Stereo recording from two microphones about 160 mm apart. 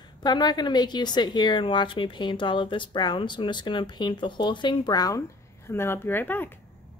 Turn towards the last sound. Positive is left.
turn(degrees=15)  # may be behind; listen again after turning